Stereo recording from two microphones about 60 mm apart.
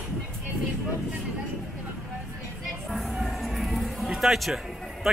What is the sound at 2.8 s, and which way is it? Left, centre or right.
Music, centre.